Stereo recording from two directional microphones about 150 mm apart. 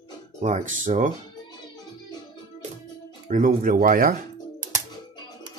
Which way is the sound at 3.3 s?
65° right (ahead or behind).